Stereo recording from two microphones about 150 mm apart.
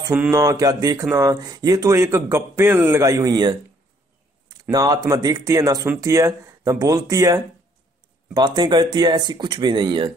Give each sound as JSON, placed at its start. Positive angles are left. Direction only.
{"t": 0.3, "sound": "speech", "side_deg": -25}
{"t": 4.6, "sound": "speech", "side_deg": -25}